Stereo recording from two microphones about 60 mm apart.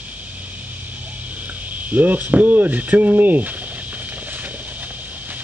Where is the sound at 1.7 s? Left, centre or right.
Right.